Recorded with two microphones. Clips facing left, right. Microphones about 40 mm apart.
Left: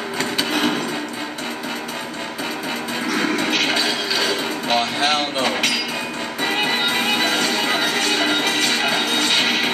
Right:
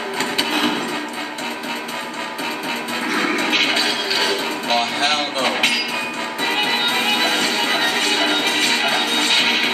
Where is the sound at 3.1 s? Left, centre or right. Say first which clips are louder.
Right 1 dB; centre.